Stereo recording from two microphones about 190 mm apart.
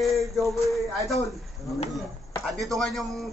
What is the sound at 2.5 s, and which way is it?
Speech, centre (ahead or behind).